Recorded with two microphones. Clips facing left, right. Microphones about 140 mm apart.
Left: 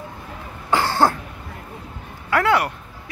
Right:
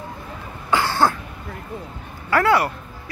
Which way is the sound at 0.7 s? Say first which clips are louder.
Left 1 dB; 35° left (ahead or behind).